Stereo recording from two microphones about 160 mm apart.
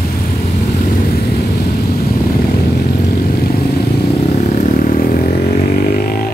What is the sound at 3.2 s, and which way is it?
Vehicle, 70° left (ahead or behind).